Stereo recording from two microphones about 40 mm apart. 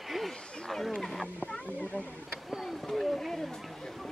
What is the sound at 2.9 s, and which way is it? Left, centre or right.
Wild animals, centre.